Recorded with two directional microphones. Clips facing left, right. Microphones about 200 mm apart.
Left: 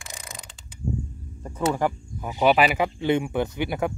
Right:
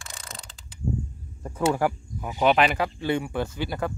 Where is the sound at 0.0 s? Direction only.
15° left (ahead or behind).